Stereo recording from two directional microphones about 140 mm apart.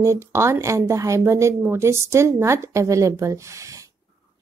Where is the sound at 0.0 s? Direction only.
20° right (ahead or behind).